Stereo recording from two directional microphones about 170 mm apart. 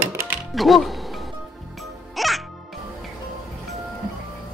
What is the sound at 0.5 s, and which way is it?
Music, centre (ahead or behind).